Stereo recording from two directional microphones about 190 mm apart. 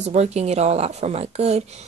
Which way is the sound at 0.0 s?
35° right (ahead or behind).